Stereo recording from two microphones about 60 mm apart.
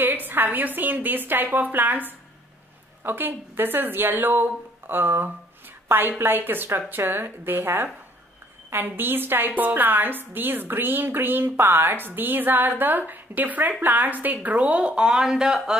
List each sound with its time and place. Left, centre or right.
0.0 s a woman's voice: right
14.6 s speech: centre